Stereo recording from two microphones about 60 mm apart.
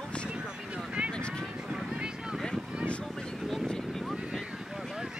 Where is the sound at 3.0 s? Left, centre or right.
Centre.